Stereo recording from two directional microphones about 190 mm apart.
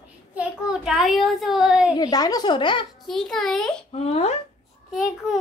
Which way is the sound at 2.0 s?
20° left (ahead or behind).